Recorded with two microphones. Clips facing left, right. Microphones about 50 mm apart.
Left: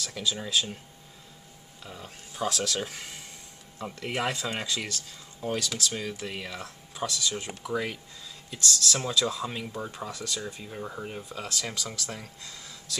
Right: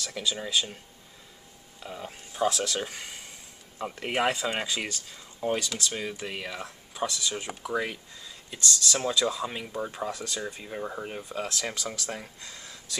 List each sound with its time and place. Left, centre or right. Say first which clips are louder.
0.0 s speech: even; centre
1.8 s speech: right 5 dB; centre
3.7 s speech: right 3 dB; centre